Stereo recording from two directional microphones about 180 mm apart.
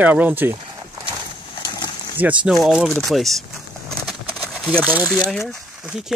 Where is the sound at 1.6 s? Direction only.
25° left (ahead or behind).